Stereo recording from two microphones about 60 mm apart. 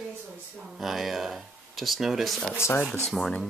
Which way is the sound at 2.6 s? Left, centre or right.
Left.